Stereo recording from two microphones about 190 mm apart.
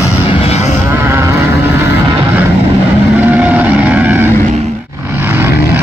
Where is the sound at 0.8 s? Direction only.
15° right (ahead or behind).